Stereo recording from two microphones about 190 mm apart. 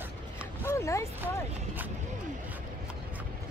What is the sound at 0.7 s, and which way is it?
Speech, 15° left (ahead or behind).